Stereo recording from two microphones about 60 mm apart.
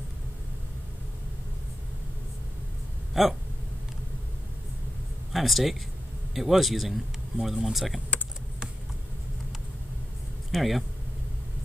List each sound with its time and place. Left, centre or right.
3.1 s a man's voice: centre
5.3 s a man's voice: centre
8.1 s computer keyboard: left
10.5 s speech: centre